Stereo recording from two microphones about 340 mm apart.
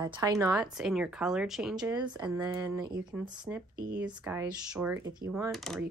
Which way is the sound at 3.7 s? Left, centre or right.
Right.